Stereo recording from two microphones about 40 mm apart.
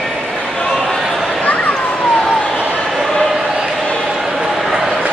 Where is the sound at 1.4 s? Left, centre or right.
Left.